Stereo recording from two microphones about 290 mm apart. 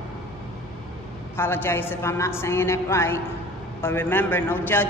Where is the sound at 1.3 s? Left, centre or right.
Centre.